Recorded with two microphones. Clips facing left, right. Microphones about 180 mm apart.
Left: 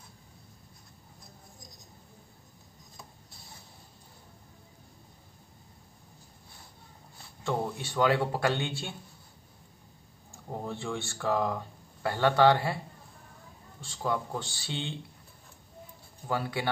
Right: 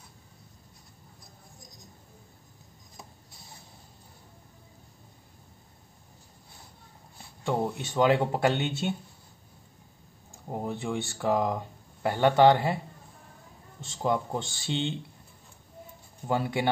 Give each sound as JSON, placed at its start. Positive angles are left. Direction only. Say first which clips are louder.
{"t": 7.4, "sound": "speech", "louder": "right 3 dB", "side_deg": -15}
{"t": 10.3, "sound": "speech", "louder": "right 3 dB", "side_deg": -15}
{"t": 13.7, "sound": "speech", "louder": "right 4 dB", "side_deg": -20}
{"t": 16.3, "sound": "speech", "louder": "right 4 dB", "side_deg": -20}